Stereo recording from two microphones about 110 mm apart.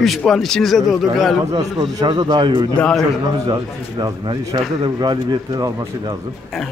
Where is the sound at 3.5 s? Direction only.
40° right (ahead or behind).